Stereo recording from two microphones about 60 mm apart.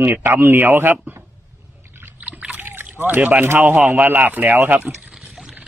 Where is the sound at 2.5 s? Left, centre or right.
Right.